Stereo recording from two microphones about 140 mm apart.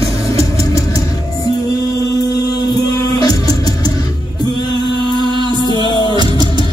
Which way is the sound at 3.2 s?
30° left (ahead or behind).